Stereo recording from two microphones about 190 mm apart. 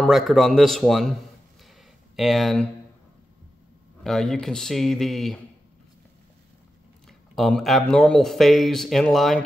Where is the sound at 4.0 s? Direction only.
Centre (ahead or behind).